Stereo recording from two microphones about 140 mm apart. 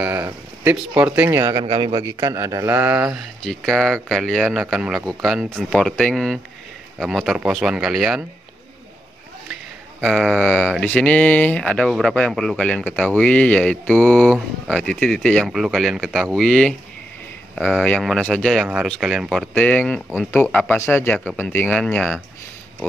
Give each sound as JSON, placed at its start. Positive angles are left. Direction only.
{"t": 0.0, "sound": "speech", "side_deg": -10}
{"t": 1.4, "sound": "a man's voice", "side_deg": -35}
{"t": 10.0, "sound": "speech", "side_deg": 0}